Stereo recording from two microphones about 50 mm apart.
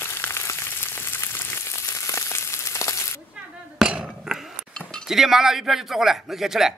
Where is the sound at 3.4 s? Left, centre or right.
Centre.